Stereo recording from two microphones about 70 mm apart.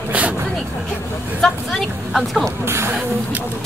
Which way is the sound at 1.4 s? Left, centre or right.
Centre.